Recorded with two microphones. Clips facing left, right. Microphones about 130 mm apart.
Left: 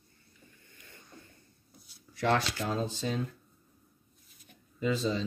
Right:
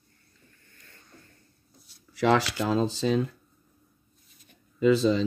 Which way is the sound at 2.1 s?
90° right.